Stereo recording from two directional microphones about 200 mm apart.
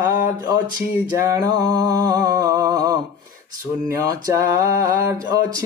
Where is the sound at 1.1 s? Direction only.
15° right (ahead or behind).